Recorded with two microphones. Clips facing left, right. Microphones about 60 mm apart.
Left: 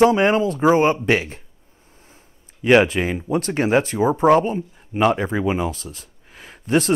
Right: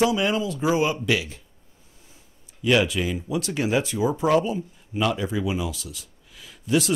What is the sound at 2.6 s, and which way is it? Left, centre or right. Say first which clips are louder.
Speech: left 6 dB; left.